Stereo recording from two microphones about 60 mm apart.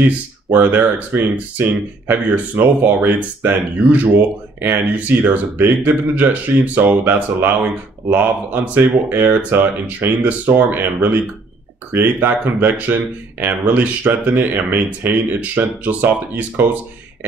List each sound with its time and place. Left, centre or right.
0.5 s speech: right